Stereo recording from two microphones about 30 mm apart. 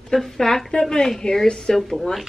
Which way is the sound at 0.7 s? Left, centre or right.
Left.